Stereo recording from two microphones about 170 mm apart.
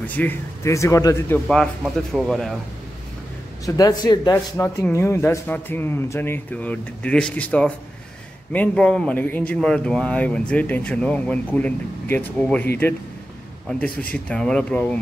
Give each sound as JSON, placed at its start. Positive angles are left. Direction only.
{"t": 0.0, "sound": "speech", "side_deg": 10}
{"t": 2.1, "sound": "speech", "side_deg": 0}
{"t": 3.6, "sound": "a man's voice", "side_deg": 20}
{"t": 13.7, "sound": "speech", "side_deg": 5}